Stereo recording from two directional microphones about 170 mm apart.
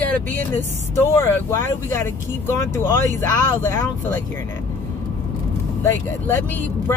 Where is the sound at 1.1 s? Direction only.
15° left (ahead or behind).